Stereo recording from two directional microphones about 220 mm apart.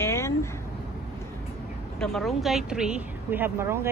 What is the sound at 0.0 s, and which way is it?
Vehicle, 10° left (ahead or behind).